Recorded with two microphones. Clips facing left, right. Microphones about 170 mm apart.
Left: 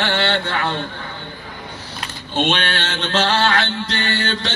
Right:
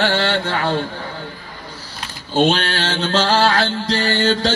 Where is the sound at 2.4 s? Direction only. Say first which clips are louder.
Right 4 dB; 35° right (ahead or behind).